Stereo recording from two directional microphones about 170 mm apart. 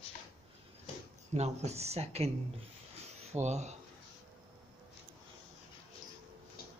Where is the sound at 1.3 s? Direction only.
40° right (ahead or behind).